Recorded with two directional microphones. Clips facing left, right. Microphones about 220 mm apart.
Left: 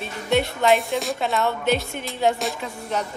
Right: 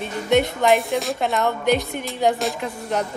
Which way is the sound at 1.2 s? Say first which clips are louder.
Right 2 dB; 15° right (ahead or behind).